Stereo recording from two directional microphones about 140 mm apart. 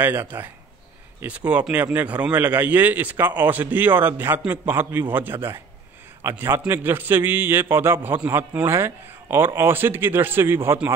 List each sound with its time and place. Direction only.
0.0 s a man's voice: 15° right (ahead or behind)